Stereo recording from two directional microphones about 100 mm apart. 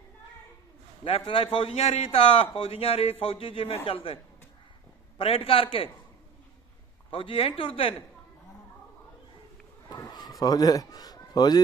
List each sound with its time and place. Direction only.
1.0 s speech: 70° left (ahead or behind)
7.1 s speech: 65° left (ahead or behind)
9.8 s a sound: 45° left (ahead or behind)
10.4 s a man's voice: 40° left (ahead or behind)